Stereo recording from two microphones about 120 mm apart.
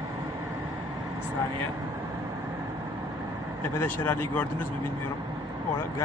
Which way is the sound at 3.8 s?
15° left (ahead or behind).